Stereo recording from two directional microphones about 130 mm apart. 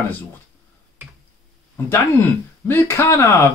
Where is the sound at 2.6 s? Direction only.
15° left (ahead or behind).